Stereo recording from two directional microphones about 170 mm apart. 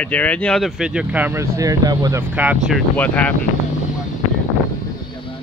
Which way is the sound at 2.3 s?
10° right (ahead or behind).